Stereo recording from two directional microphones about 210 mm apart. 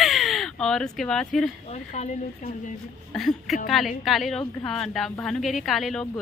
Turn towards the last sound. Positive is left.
turn(degrees=0)  # may be behind; listen again after turning